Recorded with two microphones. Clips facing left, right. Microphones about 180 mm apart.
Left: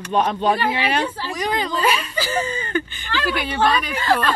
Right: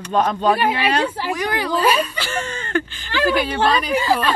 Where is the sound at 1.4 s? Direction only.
70° right (ahead or behind).